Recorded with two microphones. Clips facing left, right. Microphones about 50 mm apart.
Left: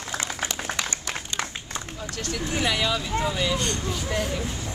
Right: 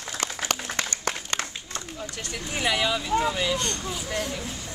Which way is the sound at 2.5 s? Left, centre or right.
Centre.